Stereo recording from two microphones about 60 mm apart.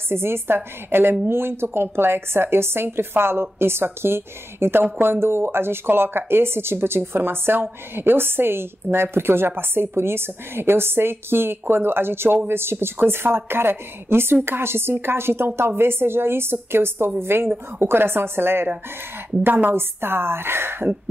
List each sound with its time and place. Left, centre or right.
0.1 s a woman's voice: right